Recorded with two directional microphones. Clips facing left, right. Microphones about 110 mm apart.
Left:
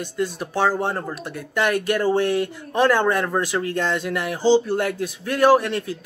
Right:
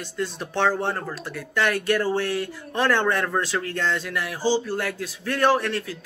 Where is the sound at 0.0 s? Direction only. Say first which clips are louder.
Left 4 dB; 10° left (ahead or behind).